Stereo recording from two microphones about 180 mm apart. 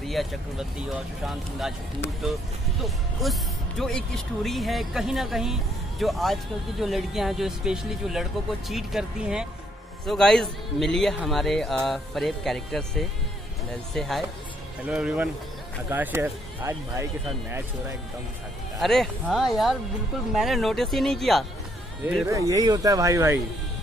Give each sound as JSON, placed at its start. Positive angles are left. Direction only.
{"t": 0.0, "sound": "speech", "side_deg": 0}
{"t": 2.8, "sound": "speech", "side_deg": 0}
{"t": 18.8, "sound": "speech", "side_deg": 0}
{"t": 22.0, "sound": "speech", "side_deg": -10}